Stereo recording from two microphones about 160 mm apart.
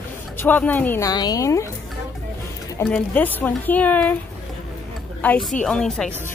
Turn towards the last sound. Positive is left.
turn(degrees=5)  # may be behind; listen again after turning